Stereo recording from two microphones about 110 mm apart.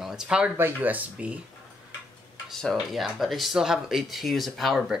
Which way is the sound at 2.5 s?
Centre (ahead or behind).